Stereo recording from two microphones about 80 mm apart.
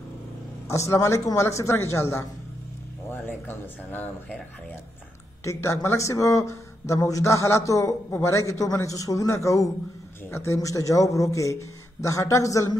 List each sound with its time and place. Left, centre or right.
0.7 s a man's voice: left
3.1 s speech: left
5.4 s a man's voice: left